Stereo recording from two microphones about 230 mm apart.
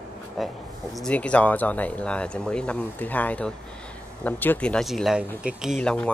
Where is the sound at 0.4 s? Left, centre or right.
Centre.